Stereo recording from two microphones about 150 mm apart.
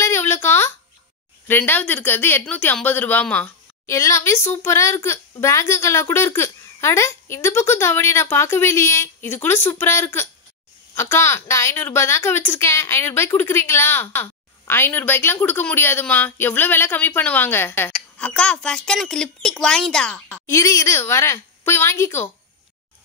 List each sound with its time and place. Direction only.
0.0 s a sound: 15° left (ahead or behind)
1.5 s a woman's voice: 10° left (ahead or behind)
20.4 s a woman's voice: 20° left (ahead or behind)